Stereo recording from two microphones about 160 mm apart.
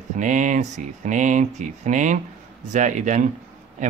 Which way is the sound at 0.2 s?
50° right (ahead or behind).